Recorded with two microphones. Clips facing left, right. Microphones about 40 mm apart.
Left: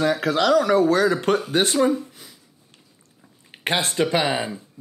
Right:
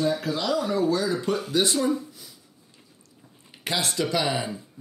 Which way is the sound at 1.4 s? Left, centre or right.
Left.